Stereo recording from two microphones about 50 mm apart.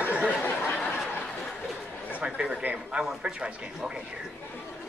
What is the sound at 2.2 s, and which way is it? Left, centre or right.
Speech, centre.